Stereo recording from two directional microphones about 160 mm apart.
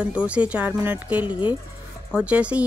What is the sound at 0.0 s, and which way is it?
Speech, 10° right (ahead or behind).